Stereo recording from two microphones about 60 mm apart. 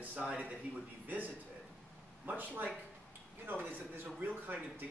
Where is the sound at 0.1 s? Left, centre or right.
Right.